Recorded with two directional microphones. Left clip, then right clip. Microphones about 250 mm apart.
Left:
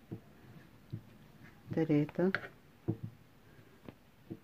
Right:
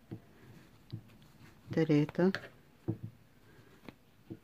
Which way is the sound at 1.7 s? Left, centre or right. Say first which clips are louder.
Right 2 dB; centre.